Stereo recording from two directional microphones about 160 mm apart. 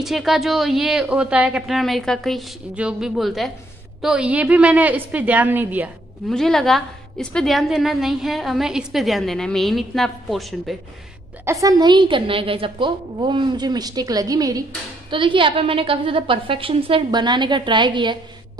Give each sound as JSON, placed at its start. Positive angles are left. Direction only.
{"t": 0.0, "sound": "a woman's voice", "side_deg": 0}
{"t": 6.2, "sound": "a woman's voice", "side_deg": 0}
{"t": 11.4, "sound": "a woman's voice", "side_deg": -20}